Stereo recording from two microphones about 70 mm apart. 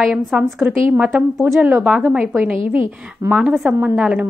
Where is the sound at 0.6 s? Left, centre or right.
Right.